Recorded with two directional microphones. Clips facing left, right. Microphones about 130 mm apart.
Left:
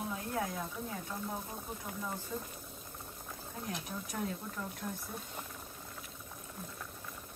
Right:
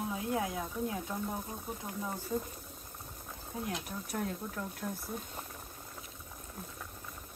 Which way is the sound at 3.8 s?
Centre (ahead or behind).